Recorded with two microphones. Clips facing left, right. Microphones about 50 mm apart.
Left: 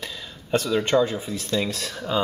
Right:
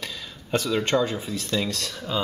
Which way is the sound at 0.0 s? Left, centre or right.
Centre.